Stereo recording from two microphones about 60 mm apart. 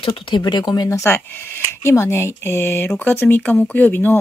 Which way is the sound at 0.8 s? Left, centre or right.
Left.